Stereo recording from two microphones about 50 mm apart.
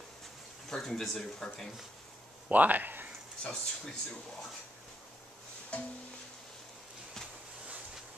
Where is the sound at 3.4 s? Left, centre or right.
Centre.